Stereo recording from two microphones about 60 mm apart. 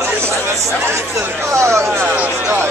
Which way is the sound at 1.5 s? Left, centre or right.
Right.